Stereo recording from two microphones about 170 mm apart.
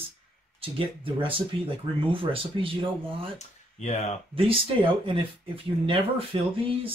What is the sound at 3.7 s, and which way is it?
Speech, 40° left (ahead or behind).